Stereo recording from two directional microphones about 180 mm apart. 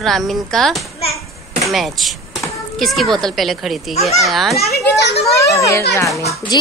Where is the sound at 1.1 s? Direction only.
Centre (ahead or behind).